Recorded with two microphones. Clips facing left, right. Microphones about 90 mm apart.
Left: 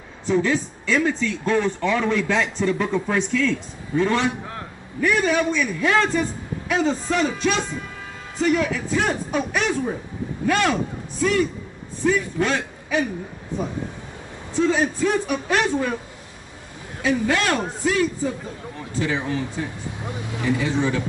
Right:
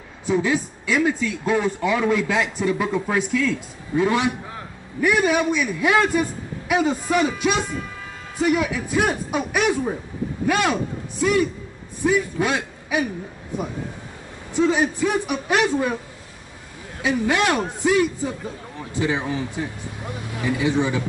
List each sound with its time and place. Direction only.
0.3 s a man's voice: 10° right (ahead or behind)
17.0 s speech: 15° right (ahead or behind)